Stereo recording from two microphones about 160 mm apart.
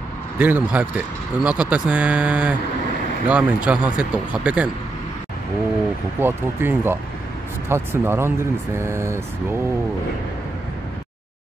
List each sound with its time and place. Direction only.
0.4 s speech: 10° right (ahead or behind)
6.1 s speech: 15° right (ahead or behind)